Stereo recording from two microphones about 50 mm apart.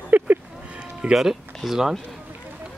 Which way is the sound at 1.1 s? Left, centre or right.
Centre.